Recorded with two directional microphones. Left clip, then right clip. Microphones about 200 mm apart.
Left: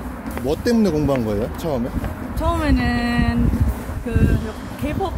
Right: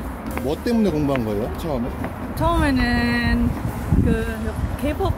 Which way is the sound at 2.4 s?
10° right (ahead or behind).